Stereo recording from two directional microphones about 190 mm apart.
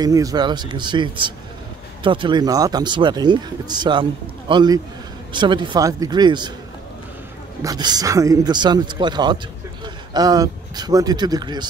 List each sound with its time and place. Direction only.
0.0 s speech: 20° right (ahead or behind)
7.6 s speech: 20° right (ahead or behind)